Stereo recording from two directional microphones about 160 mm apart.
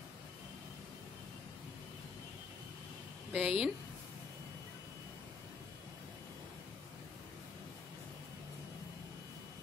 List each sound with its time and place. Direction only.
3.3 s a woman's voice: 5° right (ahead or behind)